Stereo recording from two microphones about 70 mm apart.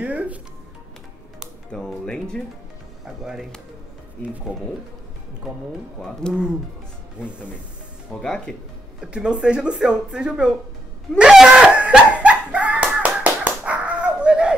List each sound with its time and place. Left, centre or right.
0.0 s speech: right
1.7 s speech: centre
5.9 s speech: centre
8.1 s speech: centre
9.0 s speech: centre
11.1 s slap: centre